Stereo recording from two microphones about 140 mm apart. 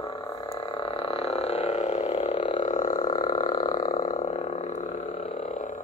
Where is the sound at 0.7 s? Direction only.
40° left (ahead or behind).